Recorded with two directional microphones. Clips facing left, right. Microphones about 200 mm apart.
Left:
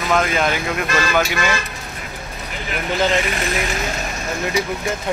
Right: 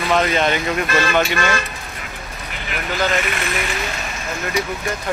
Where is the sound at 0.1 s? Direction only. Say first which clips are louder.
Right 1 dB; 5° left (ahead or behind).